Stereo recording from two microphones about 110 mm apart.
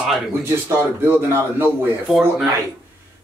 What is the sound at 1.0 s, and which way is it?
Speech, 20° right (ahead or behind).